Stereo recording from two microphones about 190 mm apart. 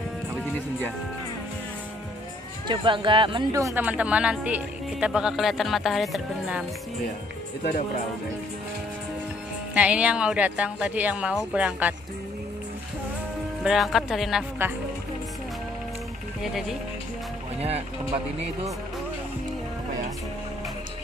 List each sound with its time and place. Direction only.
2.7 s speech: 25° right (ahead or behind); by 6.6 s centre (ahead or behind)
9.8 s speech: 5° right (ahead or behind)
13.7 s speech: centre (ahead or behind)
14.6 s speech: 10° right (ahead or behind)
16.4 s speech: centre (ahead or behind)
17.6 s speech: 35° right (ahead or behind)